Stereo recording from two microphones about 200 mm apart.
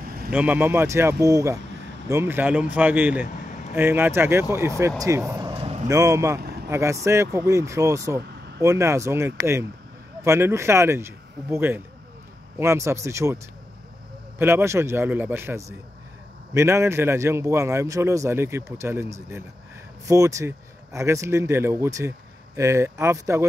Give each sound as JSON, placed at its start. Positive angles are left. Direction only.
{"t": 0.3, "sound": "a man's voice", "side_deg": -10}
{"t": 8.2, "sound": "vehicle", "side_deg": -55}
{"t": 8.6, "sound": "a man's voice", "side_deg": -15}
{"t": 14.4, "sound": "a man's voice", "side_deg": -15}